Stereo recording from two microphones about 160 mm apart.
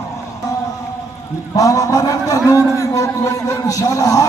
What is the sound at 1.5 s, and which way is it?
A man's voice, 20° left (ahead or behind).